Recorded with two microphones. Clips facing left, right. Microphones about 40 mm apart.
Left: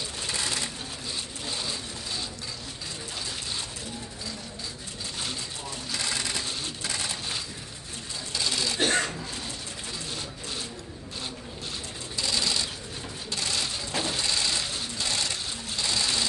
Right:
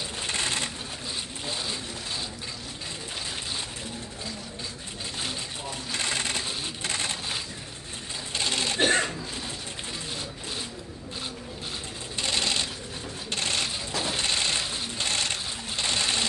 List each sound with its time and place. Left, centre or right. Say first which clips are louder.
0.3 s a sound: right 2 dB; right
5.9 s sewing machine: right 2 dB; right
8.3 s sewing machine: right 1 dB; right
8.8 s a sound: right 2 dB; right
12.2 s sewing machine: right 1 dB; right
14.1 s vehicle: right 4 dB; right